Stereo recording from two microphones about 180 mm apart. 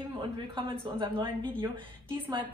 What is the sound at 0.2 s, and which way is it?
A woman's voice, 30° right (ahead or behind).